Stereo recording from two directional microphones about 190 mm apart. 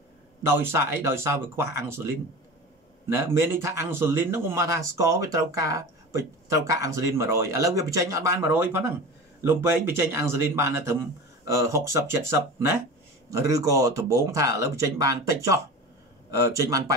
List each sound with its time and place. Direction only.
0.5 s speech: 10° right (ahead or behind)